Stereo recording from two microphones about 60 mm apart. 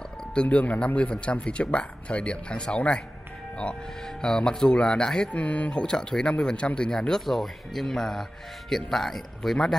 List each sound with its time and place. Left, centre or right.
0.3 s speech: centre
4.2 s speech: centre